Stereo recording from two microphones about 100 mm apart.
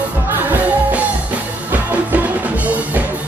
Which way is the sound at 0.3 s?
20° right (ahead or behind).